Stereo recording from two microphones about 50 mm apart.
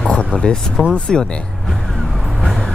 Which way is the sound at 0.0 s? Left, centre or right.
Left.